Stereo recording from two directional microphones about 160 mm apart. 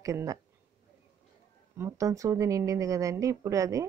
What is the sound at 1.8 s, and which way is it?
A woman's voice, 20° right (ahead or behind).